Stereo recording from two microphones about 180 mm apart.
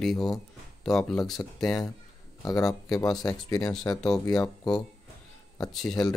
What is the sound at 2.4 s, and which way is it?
Speech, 20° left (ahead or behind).